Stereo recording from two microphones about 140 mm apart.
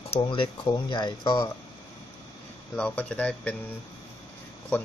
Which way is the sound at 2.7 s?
10° left (ahead or behind).